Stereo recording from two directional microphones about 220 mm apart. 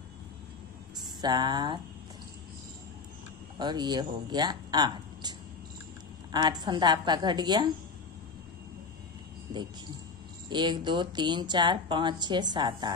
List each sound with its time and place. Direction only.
1.2 s speech: 20° right (ahead or behind)
3.5 s speech: 20° right (ahead or behind)
6.3 s speech: 20° right (ahead or behind)
10.5 s speech: 20° right (ahead or behind)